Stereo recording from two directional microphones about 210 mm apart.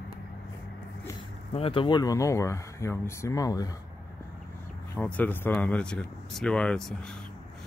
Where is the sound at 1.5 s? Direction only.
25° left (ahead or behind).